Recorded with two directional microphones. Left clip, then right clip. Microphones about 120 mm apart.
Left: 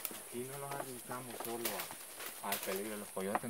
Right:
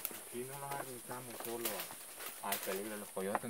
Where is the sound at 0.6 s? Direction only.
25° right (ahead or behind).